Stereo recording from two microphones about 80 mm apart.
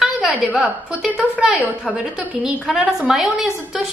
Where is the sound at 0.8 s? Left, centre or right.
Centre.